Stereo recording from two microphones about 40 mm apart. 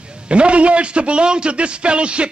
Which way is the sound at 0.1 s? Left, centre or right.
Right.